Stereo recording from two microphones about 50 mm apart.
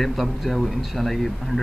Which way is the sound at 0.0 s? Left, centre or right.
Centre.